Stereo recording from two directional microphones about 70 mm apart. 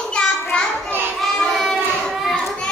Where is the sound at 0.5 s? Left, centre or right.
Centre.